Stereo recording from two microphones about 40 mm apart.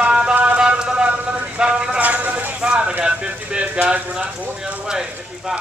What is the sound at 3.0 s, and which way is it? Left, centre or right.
Clip-clop, right.